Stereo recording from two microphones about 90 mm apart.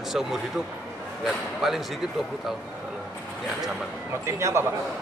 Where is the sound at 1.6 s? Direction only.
Centre (ahead or behind).